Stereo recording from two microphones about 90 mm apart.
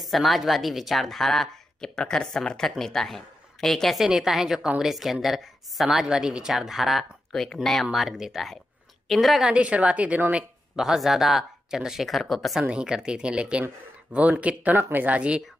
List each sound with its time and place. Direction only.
0.0 s a woman's voice: centre (ahead or behind)
9.5 s speech: 15° right (ahead or behind)
10.8 s a woman's voice: 5° right (ahead or behind)
12.6 s speech: 10° right (ahead or behind)